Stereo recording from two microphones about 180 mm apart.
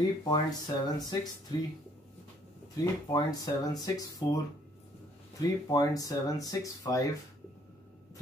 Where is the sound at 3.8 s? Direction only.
20° left (ahead or behind).